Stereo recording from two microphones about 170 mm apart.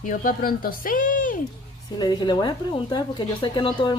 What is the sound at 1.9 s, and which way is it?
Speech, 25° left (ahead or behind).